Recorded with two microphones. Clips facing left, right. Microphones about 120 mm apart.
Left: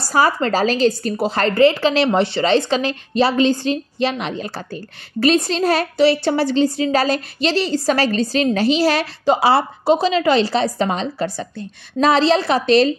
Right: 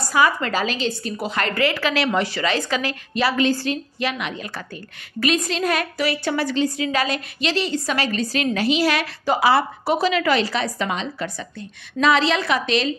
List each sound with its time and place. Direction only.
0.0 s a woman's voice: 35° left (ahead or behind)